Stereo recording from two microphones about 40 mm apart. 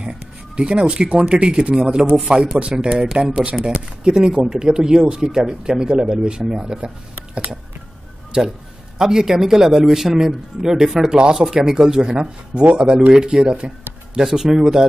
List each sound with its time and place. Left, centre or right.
0.0 s speech: right
8.3 s a man's voice: right